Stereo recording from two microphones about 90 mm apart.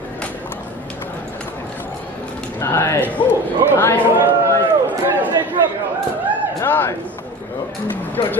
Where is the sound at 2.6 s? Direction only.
20° left (ahead or behind).